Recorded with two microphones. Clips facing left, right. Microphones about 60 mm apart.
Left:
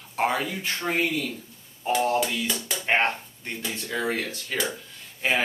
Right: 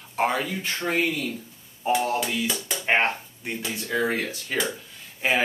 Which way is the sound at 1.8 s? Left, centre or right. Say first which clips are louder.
Even; centre.